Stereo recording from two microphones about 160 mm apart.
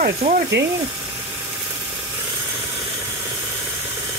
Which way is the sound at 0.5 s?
90° right.